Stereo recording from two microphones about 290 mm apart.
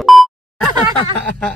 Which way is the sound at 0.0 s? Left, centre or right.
Centre.